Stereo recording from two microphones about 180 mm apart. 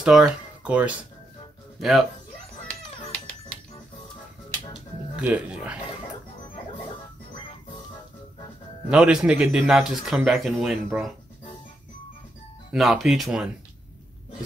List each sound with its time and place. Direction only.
0.0 s speech: 5° right (ahead or behind)
2.7 s music: 5° left (ahead or behind)
4.7 s music: 5° right (ahead or behind)
8.9 s speech: 5° right (ahead or behind)
12.7 s speech: centre (ahead or behind)